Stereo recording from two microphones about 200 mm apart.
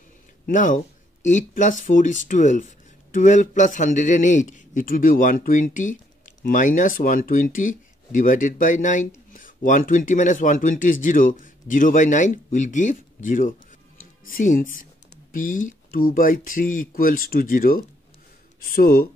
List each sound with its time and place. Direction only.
0.5 s speech: 40° left (ahead or behind)